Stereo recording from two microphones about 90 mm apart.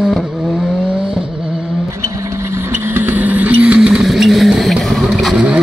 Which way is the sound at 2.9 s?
20° right (ahead or behind).